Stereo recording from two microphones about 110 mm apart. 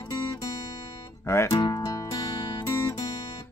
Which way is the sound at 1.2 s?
25° left (ahead or behind).